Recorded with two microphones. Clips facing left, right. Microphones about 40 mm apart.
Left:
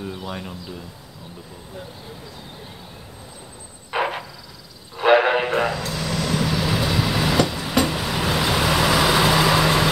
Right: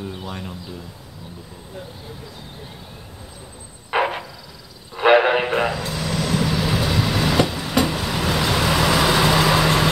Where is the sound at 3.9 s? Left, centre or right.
Centre.